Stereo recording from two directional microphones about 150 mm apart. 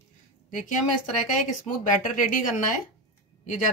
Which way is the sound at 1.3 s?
55° left (ahead or behind).